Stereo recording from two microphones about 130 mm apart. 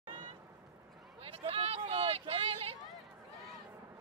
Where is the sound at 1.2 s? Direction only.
50° right (ahead or behind).